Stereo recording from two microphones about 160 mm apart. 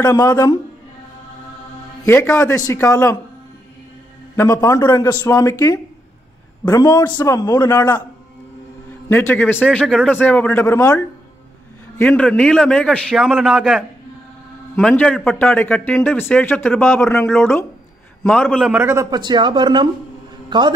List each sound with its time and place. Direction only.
0.0 s a man's voice: 20° left (ahead or behind)
2.0 s a man's voice: 15° left (ahead or behind)
4.4 s a man's voice: 20° left (ahead or behind)
9.1 s a man's voice: 10° left (ahead or behind)
18.7 s a man's voice: 15° right (ahead or behind)
19.0 s a man's voice: 25° right (ahead or behind)